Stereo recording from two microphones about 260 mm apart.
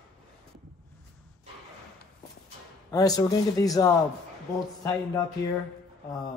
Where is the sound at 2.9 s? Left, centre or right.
Centre.